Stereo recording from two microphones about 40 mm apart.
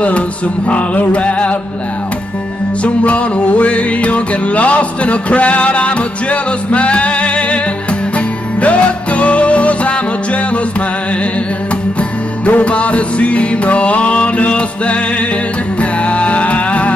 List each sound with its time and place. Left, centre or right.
0.7 s music: left
2.8 s music: left
12.0 s music: left